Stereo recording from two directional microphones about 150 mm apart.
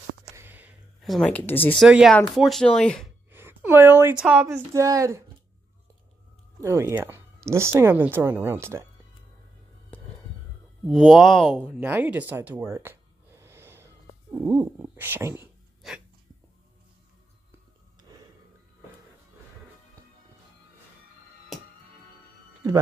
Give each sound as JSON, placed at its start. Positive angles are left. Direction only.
{"t": 0.4, "sound": "a sound", "side_deg": -10}
{"t": 1.0, "sound": "speech", "side_deg": 5}
{"t": 1.8, "sound": "speech", "side_deg": 0}
{"t": 3.3, "sound": "speech", "side_deg": -15}
{"t": 4.7, "sound": "speech", "side_deg": -20}
{"t": 6.6, "sound": "speech", "side_deg": -15}
{"t": 10.9, "sound": "speech", "side_deg": 5}
{"t": 11.8, "sound": "gasp", "side_deg": -10}
{"t": 14.3, "sound": "speech", "side_deg": -15}
{"t": 15.8, "sound": "hiccup", "side_deg": 0}